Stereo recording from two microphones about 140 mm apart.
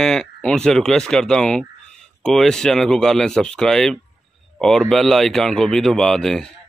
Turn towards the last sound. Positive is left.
turn(degrees=5)  # may be behind; listen again after turning